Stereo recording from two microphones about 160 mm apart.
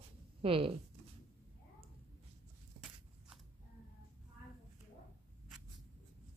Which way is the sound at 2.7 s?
35° right (ahead or behind).